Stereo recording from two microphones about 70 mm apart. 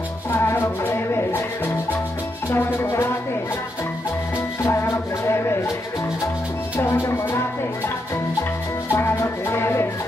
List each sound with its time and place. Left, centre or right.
0.3 s music: left
2.5 s music: left
4.6 s music: left
6.8 s music: left
8.9 s music: left